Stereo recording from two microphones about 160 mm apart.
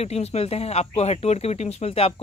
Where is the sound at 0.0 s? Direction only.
40° left (ahead or behind).